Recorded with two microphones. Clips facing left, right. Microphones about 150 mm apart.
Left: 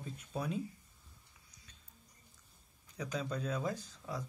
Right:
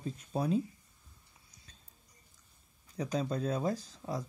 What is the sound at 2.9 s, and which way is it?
Speech, 35° right (ahead or behind).